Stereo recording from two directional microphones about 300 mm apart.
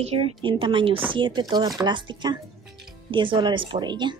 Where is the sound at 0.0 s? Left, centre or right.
Centre.